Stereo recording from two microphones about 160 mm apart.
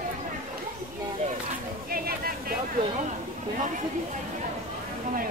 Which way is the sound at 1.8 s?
65° right (ahead or behind).